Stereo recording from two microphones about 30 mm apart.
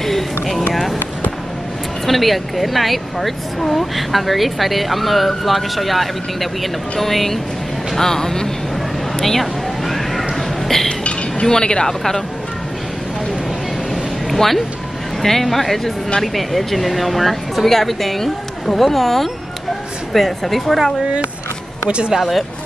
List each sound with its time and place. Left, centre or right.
0.0 s a sound: centre
2.0 s speech: centre
9.2 s a sound: centre
10.7 s speech: centre
11.4 s speech: left
14.3 s speech: centre
21.8 s speech: right